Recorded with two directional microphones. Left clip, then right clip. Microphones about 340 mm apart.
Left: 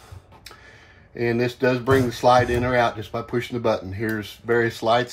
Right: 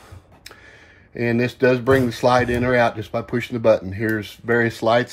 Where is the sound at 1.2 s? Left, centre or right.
Right.